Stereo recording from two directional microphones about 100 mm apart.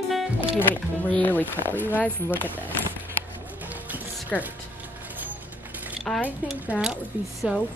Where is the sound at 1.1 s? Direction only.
15° left (ahead or behind).